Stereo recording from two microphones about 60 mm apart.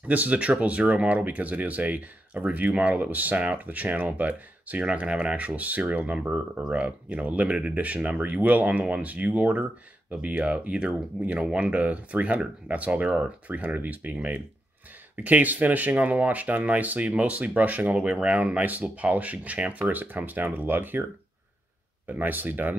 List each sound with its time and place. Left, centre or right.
0.1 s speech: right
22.0 s speech: right